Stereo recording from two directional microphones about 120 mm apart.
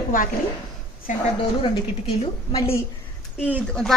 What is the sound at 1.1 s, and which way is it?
Speech, 90° left.